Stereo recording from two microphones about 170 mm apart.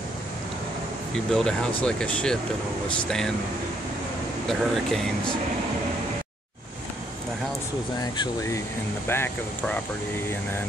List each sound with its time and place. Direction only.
1.1 s speech: 5° left (ahead or behind)
4.5 s speech: 5° left (ahead or behind)
8.0 s speech: 20° left (ahead or behind)